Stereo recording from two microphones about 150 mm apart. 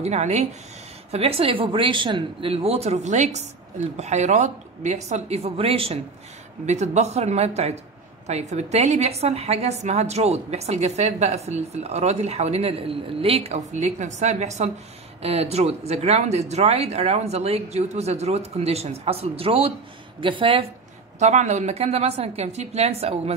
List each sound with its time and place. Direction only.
0.0 s a woman's voice: 45° right (ahead or behind)
6.6 s a woman's voice: 50° right (ahead or behind); by 20.6 s 35° right (ahead or behind)
21.2 s a woman's voice: 50° right (ahead or behind)